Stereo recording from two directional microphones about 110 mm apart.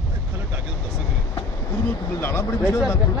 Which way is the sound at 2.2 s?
20° left (ahead or behind).